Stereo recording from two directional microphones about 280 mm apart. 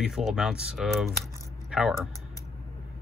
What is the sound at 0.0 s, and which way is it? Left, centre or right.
Speech, centre.